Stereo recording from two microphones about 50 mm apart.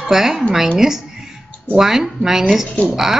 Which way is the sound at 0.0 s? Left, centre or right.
Centre.